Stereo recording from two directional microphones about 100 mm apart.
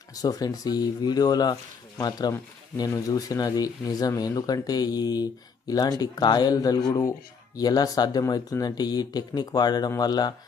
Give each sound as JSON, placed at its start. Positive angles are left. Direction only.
{"t": 0.1, "sound": "speech", "side_deg": 40}